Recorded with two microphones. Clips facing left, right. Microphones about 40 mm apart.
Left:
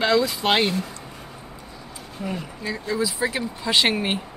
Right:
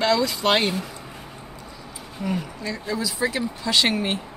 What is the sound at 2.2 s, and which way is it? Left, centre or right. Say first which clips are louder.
Speech: right 2 dB; centre.